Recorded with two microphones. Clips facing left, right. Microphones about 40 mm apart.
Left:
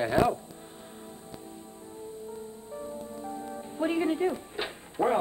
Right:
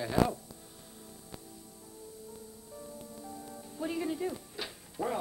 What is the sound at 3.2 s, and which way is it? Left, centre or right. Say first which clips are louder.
Music: left 8 dB; left.